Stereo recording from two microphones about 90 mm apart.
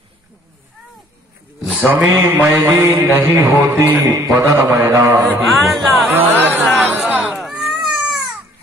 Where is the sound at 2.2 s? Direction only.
20° right (ahead or behind).